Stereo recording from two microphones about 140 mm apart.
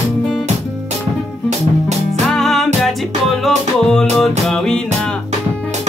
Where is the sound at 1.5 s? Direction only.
55° right (ahead or behind).